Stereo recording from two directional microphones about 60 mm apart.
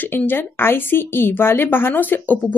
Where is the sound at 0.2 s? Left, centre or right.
Left.